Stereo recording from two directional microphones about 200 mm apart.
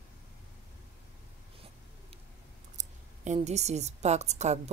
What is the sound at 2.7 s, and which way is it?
A woman's voice, 35° right (ahead or behind).